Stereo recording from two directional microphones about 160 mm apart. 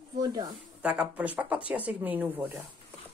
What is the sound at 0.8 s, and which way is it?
Speech, 10° right (ahead or behind).